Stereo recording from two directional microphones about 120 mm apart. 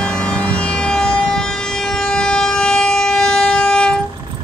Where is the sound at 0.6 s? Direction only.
5° left (ahead or behind).